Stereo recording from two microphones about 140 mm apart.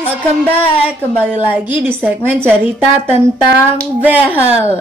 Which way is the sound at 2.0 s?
15° right (ahead or behind).